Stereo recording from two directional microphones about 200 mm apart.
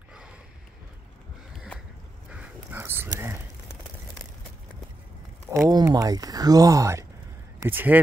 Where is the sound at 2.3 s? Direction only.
5° right (ahead or behind).